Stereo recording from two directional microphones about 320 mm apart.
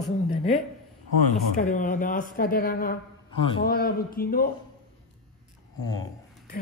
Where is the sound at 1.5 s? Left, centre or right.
Left.